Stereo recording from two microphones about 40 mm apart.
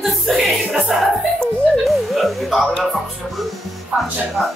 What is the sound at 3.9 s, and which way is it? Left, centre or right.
Speech, right.